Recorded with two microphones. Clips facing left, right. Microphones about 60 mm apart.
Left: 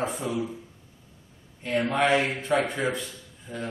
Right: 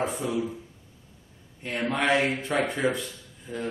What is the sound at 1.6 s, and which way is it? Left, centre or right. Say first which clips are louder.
Speech: left 2 dB; centre.